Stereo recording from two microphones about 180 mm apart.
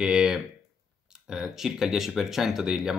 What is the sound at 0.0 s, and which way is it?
Speech, 5° right (ahead or behind).